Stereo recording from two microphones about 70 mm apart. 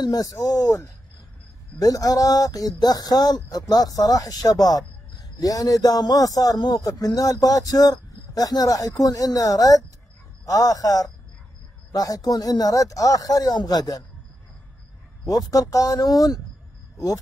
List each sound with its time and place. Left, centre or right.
0.0 s speech: left
6.8 s speech: left
15.2 s speech: left
16.0 s speech: left